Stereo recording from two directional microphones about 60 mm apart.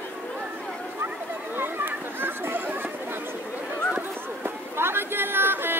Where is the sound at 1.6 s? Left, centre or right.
Right.